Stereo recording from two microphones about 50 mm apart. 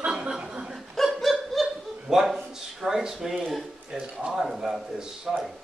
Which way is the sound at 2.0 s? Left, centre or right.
Centre.